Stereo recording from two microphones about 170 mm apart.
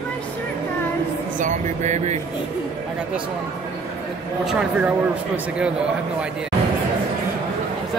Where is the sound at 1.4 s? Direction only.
45° right (ahead or behind).